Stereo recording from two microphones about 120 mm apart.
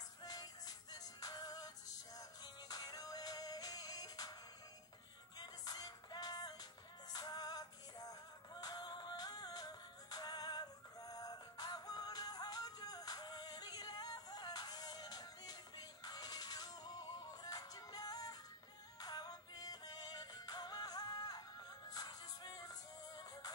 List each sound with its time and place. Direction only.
0.2 s music: 35° left (ahead or behind)
5.4 s music: 35° left (ahead or behind)